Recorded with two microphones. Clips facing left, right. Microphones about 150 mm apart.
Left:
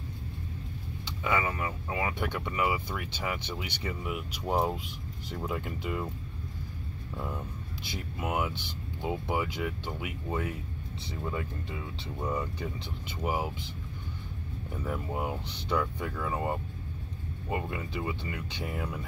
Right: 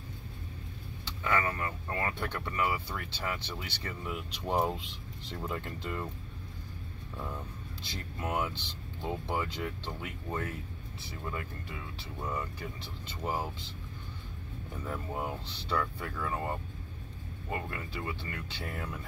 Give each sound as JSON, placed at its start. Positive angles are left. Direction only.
{"t": 1.0, "sound": "speech", "side_deg": 15}
{"t": 7.8, "sound": "speech", "side_deg": 10}
{"t": 14.9, "sound": "speech", "side_deg": 15}